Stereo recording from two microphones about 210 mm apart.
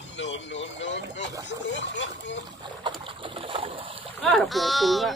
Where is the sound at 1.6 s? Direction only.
60° left (ahead or behind).